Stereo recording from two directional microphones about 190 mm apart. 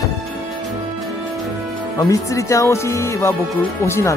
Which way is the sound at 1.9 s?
15° left (ahead or behind).